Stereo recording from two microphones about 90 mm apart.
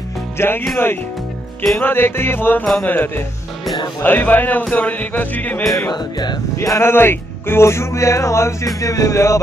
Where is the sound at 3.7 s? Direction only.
55° left (ahead or behind).